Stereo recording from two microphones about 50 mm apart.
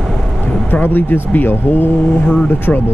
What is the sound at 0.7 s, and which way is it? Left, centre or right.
Speech, left.